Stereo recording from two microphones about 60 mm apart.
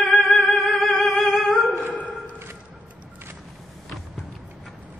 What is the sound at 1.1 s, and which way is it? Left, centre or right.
Music, left.